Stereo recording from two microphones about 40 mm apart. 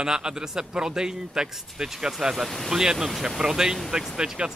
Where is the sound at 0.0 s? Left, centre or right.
Centre.